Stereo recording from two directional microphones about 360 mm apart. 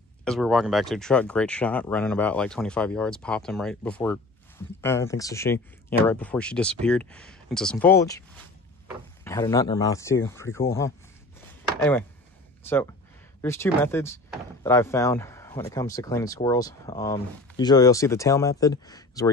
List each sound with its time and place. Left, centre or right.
0.2 s speech: centre
13.4 s speech: centre